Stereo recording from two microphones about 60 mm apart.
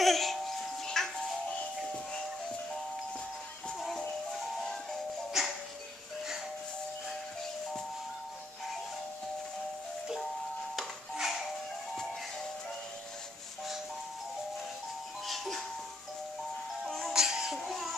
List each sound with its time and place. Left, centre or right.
0.0 s music: centre
5.4 s music: centre
10.8 s music: centre
15.2 s music: centre
17.1 s music: centre